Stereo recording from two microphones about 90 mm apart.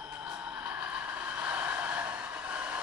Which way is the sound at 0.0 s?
15° right (ahead or behind).